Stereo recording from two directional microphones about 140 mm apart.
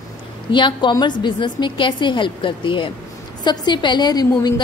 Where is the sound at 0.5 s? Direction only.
35° left (ahead or behind).